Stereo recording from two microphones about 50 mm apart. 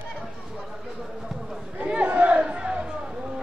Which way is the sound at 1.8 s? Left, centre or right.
Right.